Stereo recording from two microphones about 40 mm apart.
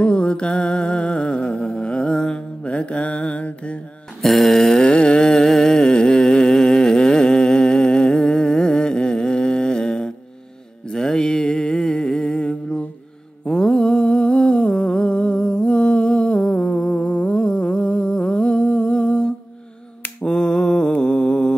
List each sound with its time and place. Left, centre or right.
0.0 s music: left
1.6 s mantra: left
4.2 s a sound: centre
4.8 s a sound: left
10.9 s music: centre
13.5 s humming: centre
20.2 s finger snapping: centre
21.0 s music: left